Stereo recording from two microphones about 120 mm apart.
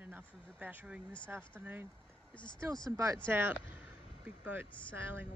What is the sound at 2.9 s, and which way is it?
Speech, 25° right (ahead or behind).